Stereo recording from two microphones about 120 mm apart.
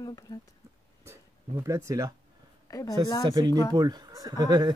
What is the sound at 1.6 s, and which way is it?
Speech, 25° right (ahead or behind).